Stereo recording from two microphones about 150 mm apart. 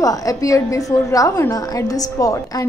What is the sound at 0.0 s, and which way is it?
A woman's voice, 25° left (ahead or behind).